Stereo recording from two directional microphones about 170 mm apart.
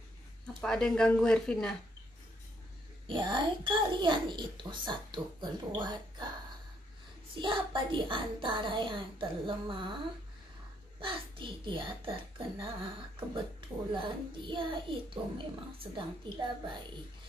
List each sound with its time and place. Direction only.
0.6 s speech: 5° left (ahead or behind)
3.1 s a child's voice: 30° right (ahead or behind)
7.3 s a child's voice: 30° right (ahead or behind)
11.0 s a child's voice: 30° right (ahead or behind)